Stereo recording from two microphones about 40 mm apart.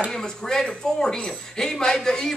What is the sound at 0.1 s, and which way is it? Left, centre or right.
A man's voice, centre.